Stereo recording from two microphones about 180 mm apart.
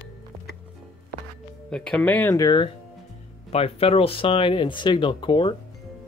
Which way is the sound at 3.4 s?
35° left (ahead or behind).